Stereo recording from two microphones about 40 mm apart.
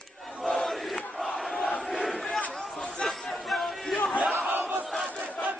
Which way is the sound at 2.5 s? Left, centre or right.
Centre.